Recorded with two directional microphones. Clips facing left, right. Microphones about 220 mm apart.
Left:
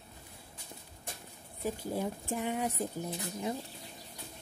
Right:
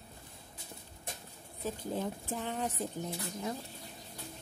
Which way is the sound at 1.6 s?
10° left (ahead or behind).